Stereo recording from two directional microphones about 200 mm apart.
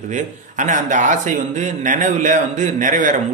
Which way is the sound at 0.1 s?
40° right (ahead or behind).